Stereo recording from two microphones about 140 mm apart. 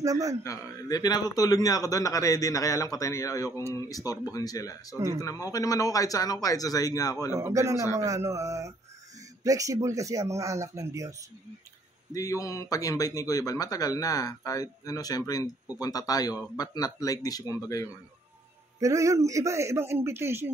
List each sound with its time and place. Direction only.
0.0 s speech: 25° right (ahead or behind)
0.4 s speech: 25° left (ahead or behind)
4.9 s speech: 20° right (ahead or behind)
5.2 s speech: 25° left (ahead or behind)
7.3 s speech: 20° right (ahead or behind)
12.1 s speech: 25° left (ahead or behind)
18.8 s speech: 25° right (ahead or behind)